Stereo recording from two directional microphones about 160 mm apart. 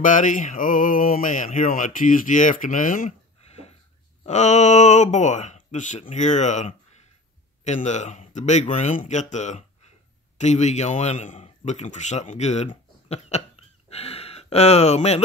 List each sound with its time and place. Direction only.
0.0 s a man's voice: 55° left (ahead or behind)